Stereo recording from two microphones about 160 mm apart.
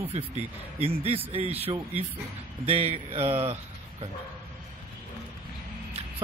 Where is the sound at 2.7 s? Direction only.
40° right (ahead or behind).